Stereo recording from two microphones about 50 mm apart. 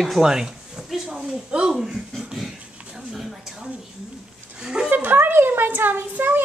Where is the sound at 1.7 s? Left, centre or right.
Centre.